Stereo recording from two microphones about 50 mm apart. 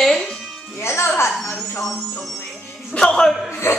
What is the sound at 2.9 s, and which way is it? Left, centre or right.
Speech, centre.